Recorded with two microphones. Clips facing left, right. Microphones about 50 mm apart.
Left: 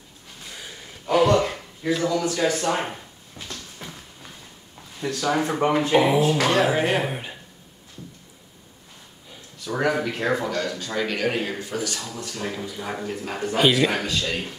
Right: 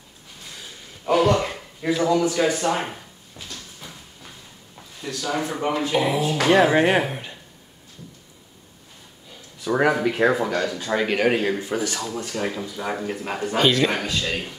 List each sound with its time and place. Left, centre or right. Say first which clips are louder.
0.5 s a sound: left 1 dB; centre
1.1 s a sound: even; centre
1.9 s speech: right 3 dB; centre
2.7 s speech: even; centre
3.3 s a sound: left 2 dB; left
5.0 s speech: left 3 dB; left
6.8 s speech: right 4 dB; centre
7.1 s speech: left 1 dB; centre
9.7 s speech: right 4 dB; centre
11.3 s speech: right 4 dB; centre
11.6 s speech: right 3 dB; right
13.6 s speech: even; centre